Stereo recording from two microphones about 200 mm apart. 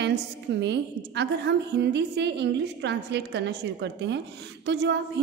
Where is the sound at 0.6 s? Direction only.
60° right (ahead or behind).